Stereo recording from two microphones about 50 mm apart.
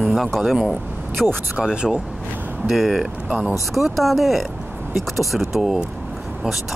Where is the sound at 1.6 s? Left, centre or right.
Centre.